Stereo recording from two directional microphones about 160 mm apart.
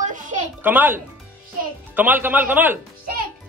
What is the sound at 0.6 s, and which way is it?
A man's voice, 10° right (ahead or behind).